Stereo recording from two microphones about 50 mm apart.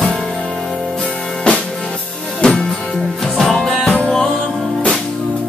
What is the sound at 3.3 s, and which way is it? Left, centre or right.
Music, centre.